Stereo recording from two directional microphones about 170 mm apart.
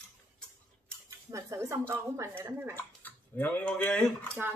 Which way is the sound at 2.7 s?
10° left (ahead or behind).